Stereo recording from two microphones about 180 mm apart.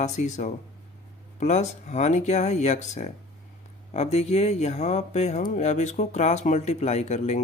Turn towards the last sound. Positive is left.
turn(degrees=40)  # may be behind; listen again after turning